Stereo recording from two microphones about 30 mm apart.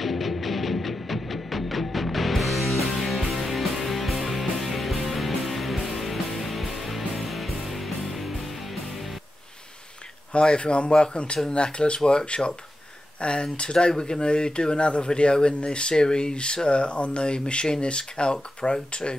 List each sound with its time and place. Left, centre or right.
0.0 s music: centre
10.3 s speech: left